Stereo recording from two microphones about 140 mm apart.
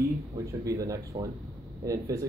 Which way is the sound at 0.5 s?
25° right (ahead or behind).